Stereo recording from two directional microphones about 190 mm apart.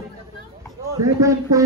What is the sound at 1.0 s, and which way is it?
Speech, 15° right (ahead or behind).